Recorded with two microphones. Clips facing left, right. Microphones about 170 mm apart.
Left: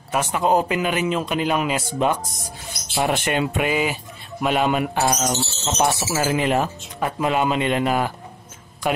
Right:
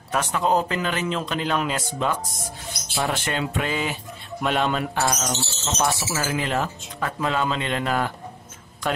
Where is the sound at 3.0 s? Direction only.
20° left (ahead or behind).